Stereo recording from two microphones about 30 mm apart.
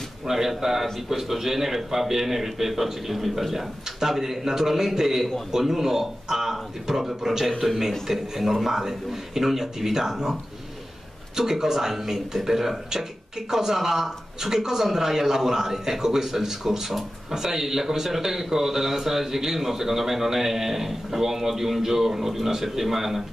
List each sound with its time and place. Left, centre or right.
0.2 s a man's voice: centre
11.3 s a man's voice: centre